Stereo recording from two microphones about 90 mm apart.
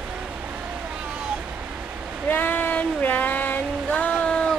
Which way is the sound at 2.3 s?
20° left (ahead or behind).